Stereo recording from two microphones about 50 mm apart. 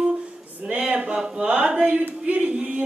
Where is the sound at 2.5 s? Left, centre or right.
Right.